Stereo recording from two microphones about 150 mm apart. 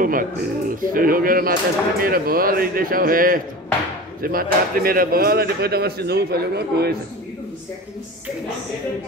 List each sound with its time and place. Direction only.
0.0 s speech: 65° right (ahead or behind); by 7.0 s 90° right